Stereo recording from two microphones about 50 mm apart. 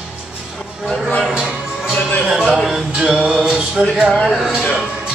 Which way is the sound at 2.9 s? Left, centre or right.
Centre.